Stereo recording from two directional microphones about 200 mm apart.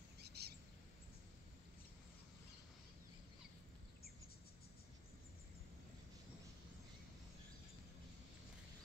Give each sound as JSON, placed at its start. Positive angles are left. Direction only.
{"t": 0.2, "sound": "bird", "side_deg": -55}